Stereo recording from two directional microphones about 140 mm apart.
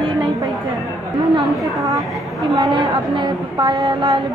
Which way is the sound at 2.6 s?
35° right (ahead or behind).